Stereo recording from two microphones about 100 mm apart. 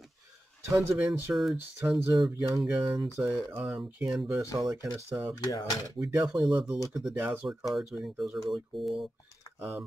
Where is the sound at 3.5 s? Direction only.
20° right (ahead or behind).